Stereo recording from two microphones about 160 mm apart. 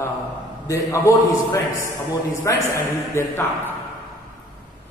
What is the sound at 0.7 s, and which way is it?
A man's voice, 20° left (ahead or behind).